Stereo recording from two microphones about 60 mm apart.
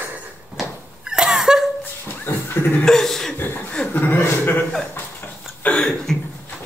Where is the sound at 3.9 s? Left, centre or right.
Left.